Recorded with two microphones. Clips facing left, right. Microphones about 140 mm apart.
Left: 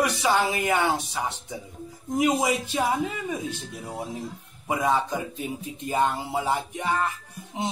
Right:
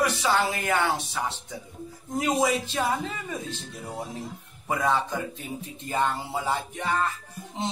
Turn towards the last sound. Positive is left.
turn(degrees=10)  # may be behind; listen again after turning